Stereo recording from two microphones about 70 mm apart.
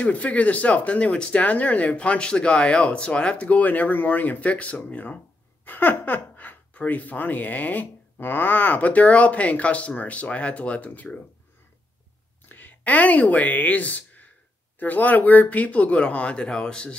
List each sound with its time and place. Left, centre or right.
0.0 s speech: left
12.4 s speech: left